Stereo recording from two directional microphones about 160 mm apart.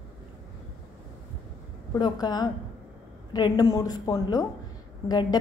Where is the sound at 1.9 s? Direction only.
25° left (ahead or behind).